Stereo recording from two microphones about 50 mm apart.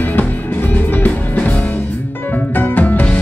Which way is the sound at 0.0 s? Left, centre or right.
Left.